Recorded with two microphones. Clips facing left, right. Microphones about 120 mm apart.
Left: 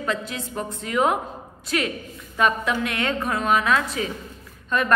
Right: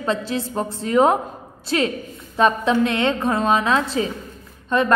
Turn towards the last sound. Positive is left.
turn(degrees=-25)  # may be behind; listen again after turning